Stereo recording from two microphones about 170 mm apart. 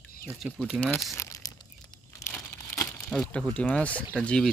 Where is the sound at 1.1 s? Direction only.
20° left (ahead or behind).